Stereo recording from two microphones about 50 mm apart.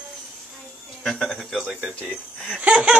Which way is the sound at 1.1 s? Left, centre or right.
Centre.